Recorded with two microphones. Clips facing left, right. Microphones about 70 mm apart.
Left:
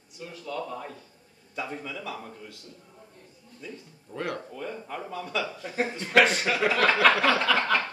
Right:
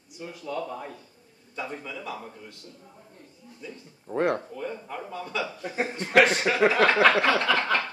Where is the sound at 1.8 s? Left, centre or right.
Centre.